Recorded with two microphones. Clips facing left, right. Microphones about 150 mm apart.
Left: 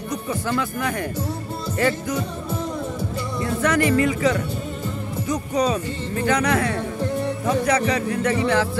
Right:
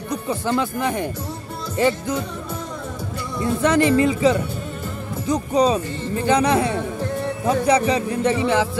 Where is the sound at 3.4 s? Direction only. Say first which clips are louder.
Right 3 dB; 25° right (ahead or behind).